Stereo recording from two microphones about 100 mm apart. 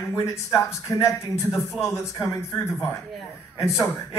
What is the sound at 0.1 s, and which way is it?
A man's voice, 25° left (ahead or behind).